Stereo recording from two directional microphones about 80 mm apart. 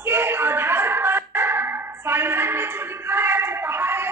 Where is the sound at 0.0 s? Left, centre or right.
Right.